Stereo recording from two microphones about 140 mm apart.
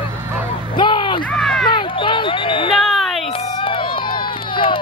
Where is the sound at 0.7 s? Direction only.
35° left (ahead or behind).